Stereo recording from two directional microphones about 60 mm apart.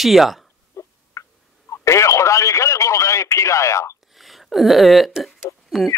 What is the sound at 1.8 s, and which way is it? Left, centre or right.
Radio, left.